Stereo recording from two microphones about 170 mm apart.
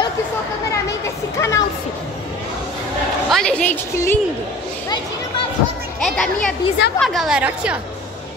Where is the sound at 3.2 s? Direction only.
5° left (ahead or behind).